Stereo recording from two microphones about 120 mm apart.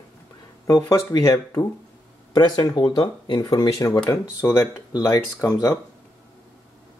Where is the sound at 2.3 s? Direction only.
35° left (ahead or behind).